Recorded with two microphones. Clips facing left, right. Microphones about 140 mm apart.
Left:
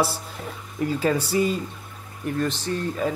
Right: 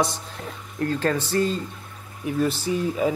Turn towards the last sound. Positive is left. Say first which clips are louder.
# right 3 dB
turn(degrees=-10)  # may be behind; listen again after turning